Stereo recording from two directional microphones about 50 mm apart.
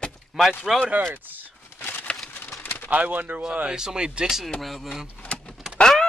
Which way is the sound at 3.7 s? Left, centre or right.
Centre.